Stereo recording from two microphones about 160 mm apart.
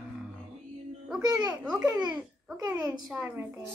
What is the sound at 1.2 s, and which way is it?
Speech, 25° right (ahead or behind).